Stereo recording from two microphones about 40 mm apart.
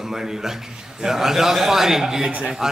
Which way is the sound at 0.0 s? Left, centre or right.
Centre.